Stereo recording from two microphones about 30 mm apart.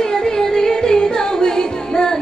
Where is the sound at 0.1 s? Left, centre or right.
Left.